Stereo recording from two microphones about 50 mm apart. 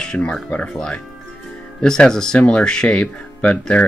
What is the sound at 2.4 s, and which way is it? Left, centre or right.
Speech, left.